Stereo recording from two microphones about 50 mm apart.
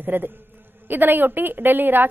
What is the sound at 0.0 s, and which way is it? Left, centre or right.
A woman's voice, right.